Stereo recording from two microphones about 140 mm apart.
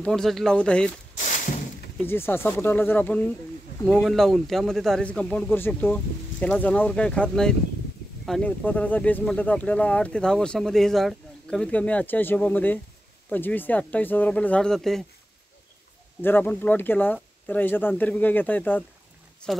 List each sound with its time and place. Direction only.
0.0 s speech: 5° left (ahead or behind)
1.2 s a sound: 65° left (ahead or behind)
2.0 s speech: 15° left (ahead or behind)
16.2 s speech: 15° left (ahead or behind)